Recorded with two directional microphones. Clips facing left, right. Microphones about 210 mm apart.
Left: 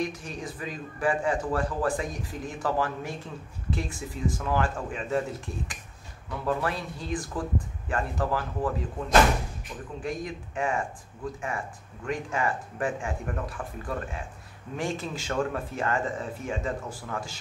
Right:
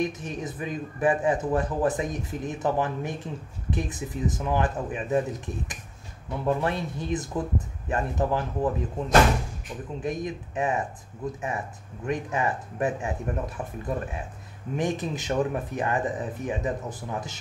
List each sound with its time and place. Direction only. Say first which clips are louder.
0.0 s a man's voice: right 3 dB; 20° right (ahead or behind)
10.0 s a man's voice: right 3 dB; 20° right (ahead or behind)